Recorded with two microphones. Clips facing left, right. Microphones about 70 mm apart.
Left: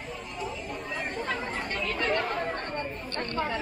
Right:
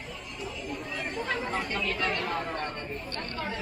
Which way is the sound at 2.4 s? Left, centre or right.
Left.